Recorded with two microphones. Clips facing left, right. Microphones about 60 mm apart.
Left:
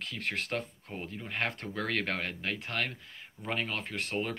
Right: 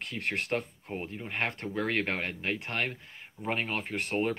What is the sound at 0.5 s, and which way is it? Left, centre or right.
Speech, right.